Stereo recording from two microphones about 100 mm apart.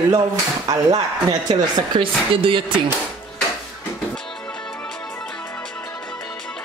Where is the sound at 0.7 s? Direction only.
35° right (ahead or behind).